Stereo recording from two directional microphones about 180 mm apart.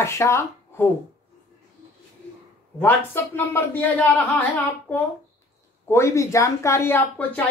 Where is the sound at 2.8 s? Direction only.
10° left (ahead or behind).